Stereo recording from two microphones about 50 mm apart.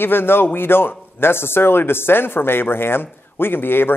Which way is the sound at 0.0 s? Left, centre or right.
Left.